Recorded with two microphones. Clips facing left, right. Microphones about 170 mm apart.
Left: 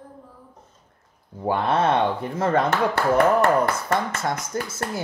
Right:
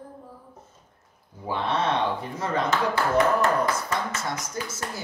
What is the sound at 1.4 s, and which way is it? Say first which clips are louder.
Speech: left 5 dB; 55° left (ahead or behind).